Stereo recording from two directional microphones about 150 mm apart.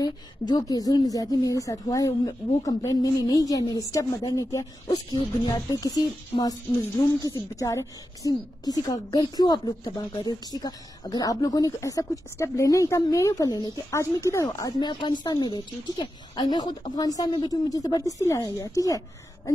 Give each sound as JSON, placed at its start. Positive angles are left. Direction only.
{"t": 0.0, "sound": "a woman's voice", "side_deg": 25}